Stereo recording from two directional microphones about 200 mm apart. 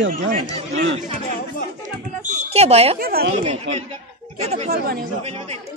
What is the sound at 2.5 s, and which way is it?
Speech, 30° right (ahead or behind).